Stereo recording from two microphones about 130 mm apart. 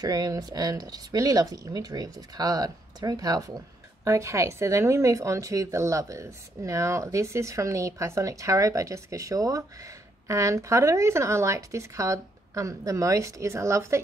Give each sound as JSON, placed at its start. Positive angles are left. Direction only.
{"t": 0.0, "sound": "speech", "side_deg": -25}